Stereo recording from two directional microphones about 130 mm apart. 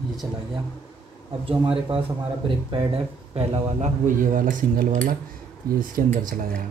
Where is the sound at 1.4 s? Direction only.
45° right (ahead or behind); by 6.1 s 90° right.